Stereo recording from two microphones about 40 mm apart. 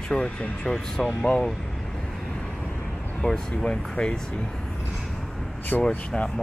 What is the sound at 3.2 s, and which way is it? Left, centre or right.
Speech, centre.